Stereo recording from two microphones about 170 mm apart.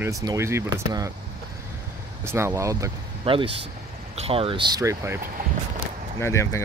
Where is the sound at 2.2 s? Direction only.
15° right (ahead or behind).